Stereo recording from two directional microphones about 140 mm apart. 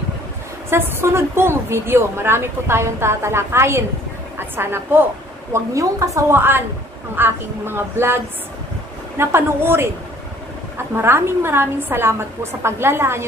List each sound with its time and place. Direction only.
0.7 s a woman's voice: 15° right (ahead or behind)
9.2 s a woman's voice: 15° right (ahead or behind)
11.0 s a woman's voice: 15° right (ahead or behind)